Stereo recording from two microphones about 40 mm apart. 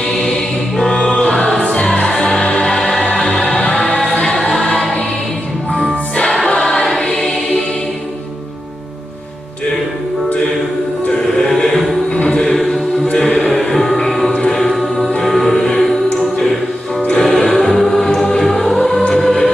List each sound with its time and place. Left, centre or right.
0.0 s music: centre
1.3 s music: centre
6.6 s choir: centre
11.3 s music: centre
14.3 s choir: centre
14.7 s music: centre
17.7 s choir: centre
18.4 s music: centre